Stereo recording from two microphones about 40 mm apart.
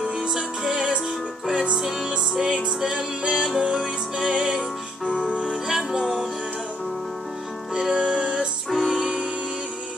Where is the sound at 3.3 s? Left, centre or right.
Centre.